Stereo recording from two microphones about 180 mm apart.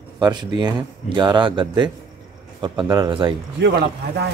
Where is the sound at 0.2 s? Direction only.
25° right (ahead or behind).